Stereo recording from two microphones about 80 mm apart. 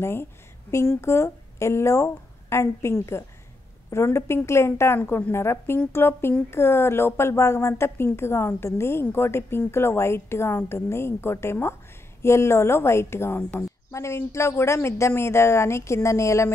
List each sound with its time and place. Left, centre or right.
0.0 s a woman's voice: left